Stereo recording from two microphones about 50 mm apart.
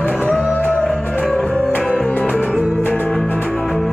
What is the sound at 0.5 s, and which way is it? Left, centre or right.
Music, left.